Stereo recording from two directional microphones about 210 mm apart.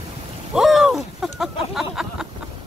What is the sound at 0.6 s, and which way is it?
Speech, centre (ahead or behind).